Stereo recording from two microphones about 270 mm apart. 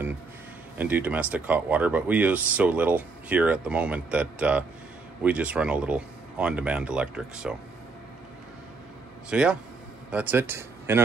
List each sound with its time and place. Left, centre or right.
0.7 s speech: centre
9.3 s speech: centre